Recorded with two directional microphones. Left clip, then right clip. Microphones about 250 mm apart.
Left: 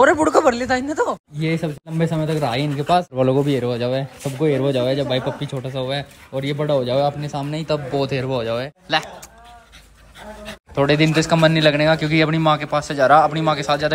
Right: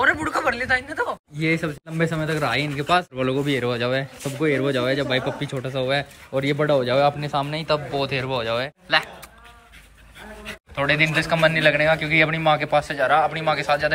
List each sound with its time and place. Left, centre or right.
0.0 s a man's voice: left
1.3 s speech: centre
7.4 s a man's voice: centre
10.7 s a man's voice: centre